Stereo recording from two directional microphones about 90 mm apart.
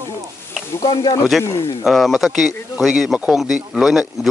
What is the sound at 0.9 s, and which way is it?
Speech, 55° left (ahead or behind).